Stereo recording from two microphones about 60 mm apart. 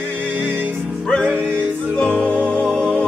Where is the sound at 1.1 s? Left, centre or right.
Centre.